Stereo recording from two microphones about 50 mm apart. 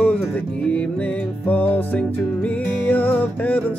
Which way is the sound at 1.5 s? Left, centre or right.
Left.